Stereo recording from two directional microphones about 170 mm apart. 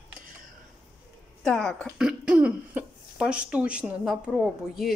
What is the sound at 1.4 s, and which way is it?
Speech, 5° left (ahead or behind).